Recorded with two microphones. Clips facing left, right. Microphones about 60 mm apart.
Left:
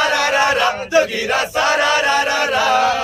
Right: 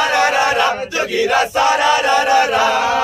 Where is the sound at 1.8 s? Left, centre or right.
Right.